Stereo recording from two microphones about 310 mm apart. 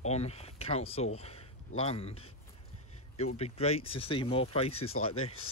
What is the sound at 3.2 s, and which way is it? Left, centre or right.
Speech, centre.